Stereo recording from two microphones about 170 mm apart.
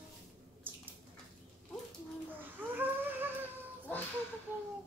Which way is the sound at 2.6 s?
10° right (ahead or behind).